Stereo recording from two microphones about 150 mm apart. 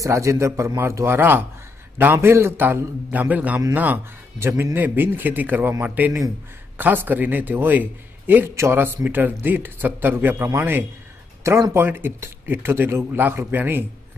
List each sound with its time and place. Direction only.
0.0 s a man's voice: 20° right (ahead or behind)